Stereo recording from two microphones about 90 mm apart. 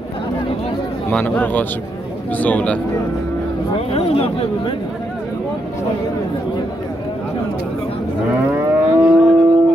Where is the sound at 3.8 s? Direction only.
90° left.